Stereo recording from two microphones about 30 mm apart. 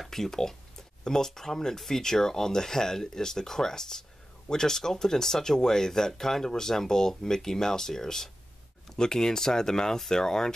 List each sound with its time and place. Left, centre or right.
0.0 s speech: centre